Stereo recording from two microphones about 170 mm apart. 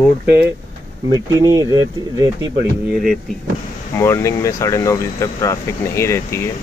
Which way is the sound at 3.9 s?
15° left (ahead or behind).